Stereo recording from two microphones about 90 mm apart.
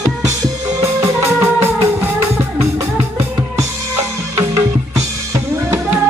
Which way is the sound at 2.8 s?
35° right (ahead or behind).